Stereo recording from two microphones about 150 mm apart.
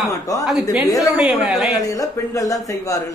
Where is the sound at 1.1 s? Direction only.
5° right (ahead or behind).